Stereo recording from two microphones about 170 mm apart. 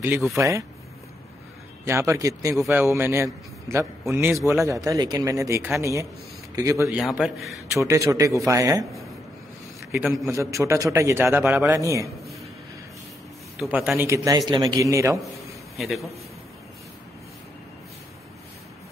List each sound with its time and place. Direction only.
0.0 s a man's voice: 10° right (ahead or behind)
1.9 s a man's voice: 15° right (ahead or behind)
7.0 s a man's voice: centre (ahead or behind)
7.7 s a man's voice: 15° right (ahead or behind)
9.8 s a man's voice: 10° right (ahead or behind)
10.3 s a man's voice: 20° right (ahead or behind)
13.6 s a man's voice: 5° right (ahead or behind)
15.7 s a man's voice: centre (ahead or behind)